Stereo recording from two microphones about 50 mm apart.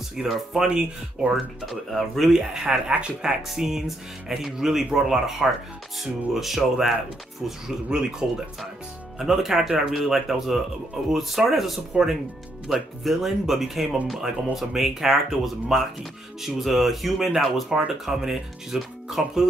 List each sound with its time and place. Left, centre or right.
0.1 s speech: centre
1.7 s speech: centre
17.7 s speech: centre